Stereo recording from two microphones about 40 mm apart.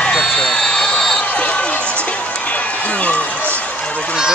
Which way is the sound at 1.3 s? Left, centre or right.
Left.